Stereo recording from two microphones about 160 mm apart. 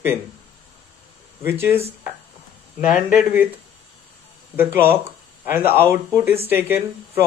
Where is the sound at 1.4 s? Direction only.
15° right (ahead or behind).